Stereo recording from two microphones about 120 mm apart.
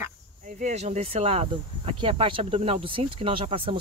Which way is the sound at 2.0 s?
45° right (ahead or behind).